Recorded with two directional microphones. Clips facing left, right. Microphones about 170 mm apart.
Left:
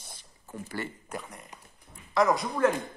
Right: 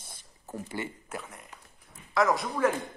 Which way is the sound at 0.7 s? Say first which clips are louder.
Left 1 dB; 20° right (ahead or behind).